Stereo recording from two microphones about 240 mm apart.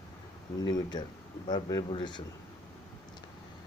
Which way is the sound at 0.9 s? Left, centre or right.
Centre.